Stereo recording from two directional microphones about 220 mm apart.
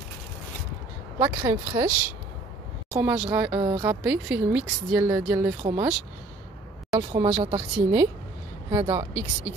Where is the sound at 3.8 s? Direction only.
5° right (ahead or behind).